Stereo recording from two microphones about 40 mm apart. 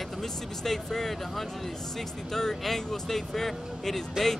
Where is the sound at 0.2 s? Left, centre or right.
Centre.